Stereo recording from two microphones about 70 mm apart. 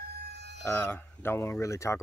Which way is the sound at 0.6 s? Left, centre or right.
Left.